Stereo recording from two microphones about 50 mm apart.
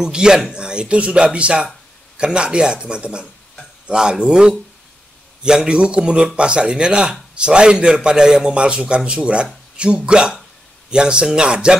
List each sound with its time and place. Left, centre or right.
0.0 s a man's voice: centre